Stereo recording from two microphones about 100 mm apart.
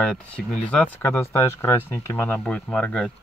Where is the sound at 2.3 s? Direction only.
10° left (ahead or behind).